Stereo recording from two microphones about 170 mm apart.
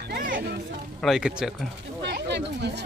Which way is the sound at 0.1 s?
60° right (ahead or behind).